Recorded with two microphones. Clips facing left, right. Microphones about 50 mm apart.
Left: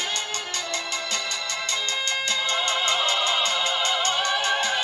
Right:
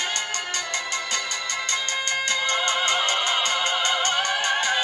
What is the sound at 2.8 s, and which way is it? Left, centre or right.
Music, right.